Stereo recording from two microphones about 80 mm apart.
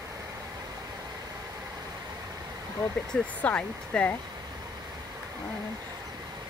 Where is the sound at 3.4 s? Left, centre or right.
Centre.